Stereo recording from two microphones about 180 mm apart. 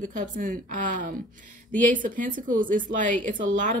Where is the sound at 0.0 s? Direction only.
45° right (ahead or behind).